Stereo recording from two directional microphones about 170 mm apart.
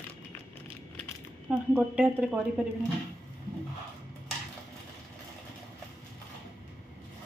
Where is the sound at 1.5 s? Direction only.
5° right (ahead or behind).